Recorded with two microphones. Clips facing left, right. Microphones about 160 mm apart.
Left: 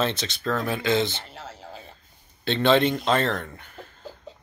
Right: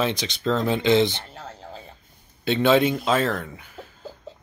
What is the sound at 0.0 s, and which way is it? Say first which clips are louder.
Speech: right 2 dB; 15° right (ahead or behind).